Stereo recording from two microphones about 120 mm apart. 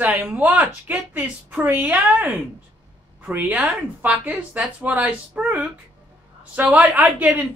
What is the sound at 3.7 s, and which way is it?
Speech, 5° right (ahead or behind).